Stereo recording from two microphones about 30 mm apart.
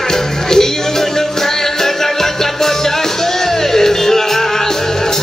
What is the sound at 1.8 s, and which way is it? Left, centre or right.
Music, centre.